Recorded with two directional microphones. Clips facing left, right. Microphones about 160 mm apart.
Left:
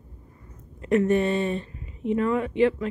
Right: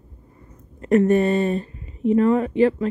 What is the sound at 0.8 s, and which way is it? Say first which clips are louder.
Speech: right 4 dB; 45° right (ahead or behind).